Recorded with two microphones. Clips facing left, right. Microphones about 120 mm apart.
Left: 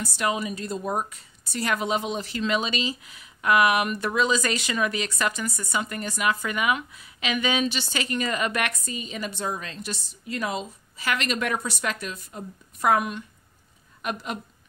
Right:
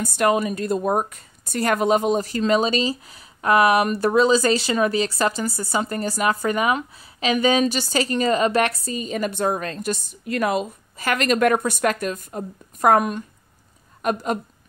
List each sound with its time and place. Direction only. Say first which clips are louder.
0.0 s a woman's voice: right 7 dB; 50° right (ahead or behind)